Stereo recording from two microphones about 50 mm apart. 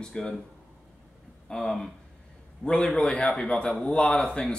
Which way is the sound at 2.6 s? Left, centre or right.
Centre.